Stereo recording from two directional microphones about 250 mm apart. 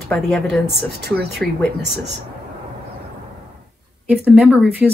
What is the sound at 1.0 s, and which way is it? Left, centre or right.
Speech, right.